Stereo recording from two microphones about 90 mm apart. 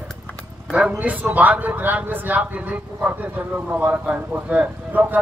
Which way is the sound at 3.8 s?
15° right (ahead or behind).